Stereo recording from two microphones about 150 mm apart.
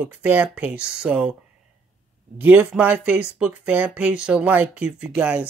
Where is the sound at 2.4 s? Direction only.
10° right (ahead or behind).